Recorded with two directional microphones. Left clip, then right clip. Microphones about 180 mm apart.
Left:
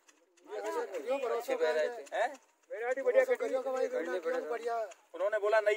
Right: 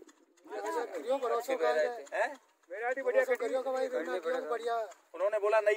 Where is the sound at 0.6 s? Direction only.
20° left (ahead or behind).